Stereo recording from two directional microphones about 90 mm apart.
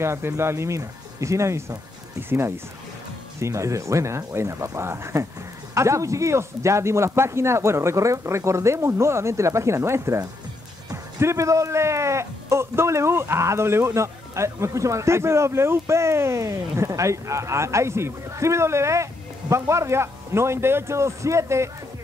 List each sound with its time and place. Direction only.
0.0 s speech: 30° right (ahead or behind)